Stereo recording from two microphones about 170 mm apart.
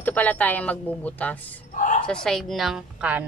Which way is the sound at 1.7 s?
50° left (ahead or behind).